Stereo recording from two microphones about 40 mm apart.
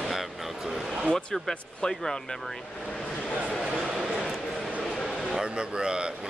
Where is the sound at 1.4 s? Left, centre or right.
Centre.